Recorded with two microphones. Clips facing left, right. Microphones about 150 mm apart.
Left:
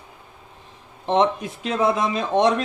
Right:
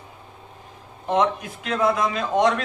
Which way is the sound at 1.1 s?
25° left (ahead or behind).